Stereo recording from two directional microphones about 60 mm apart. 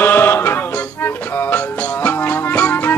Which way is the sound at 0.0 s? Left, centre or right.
Left.